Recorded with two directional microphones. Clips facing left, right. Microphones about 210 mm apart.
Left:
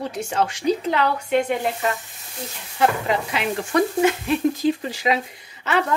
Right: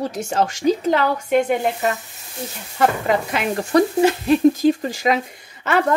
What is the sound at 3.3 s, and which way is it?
A woman's voice, 35° right (ahead or behind).